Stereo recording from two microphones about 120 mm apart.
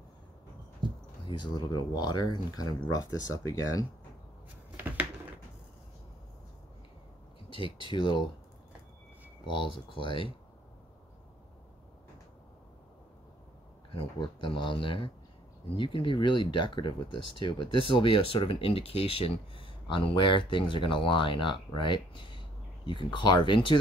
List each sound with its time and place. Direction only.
0.8 s a sound: 40° right (ahead or behind)
1.3 s speech: 35° left (ahead or behind)
4.7 s a sound: 15° right (ahead or behind)
7.4 s speech: 45° left (ahead or behind)
10.0 s speech: 45° left (ahead or behind)
13.9 s speech: 45° left (ahead or behind)